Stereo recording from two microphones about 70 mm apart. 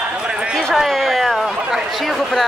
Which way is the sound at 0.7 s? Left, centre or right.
Centre.